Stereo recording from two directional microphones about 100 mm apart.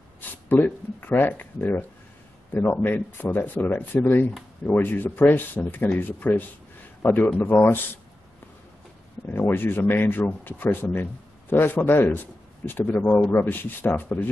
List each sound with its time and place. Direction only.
0.5 s speech: 20° left (ahead or behind)
9.2 s speech: 20° left (ahead or behind)